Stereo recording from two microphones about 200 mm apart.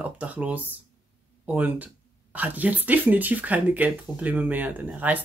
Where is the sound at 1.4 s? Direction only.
10° right (ahead or behind).